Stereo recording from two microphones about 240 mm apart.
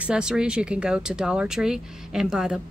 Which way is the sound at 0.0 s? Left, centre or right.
Centre.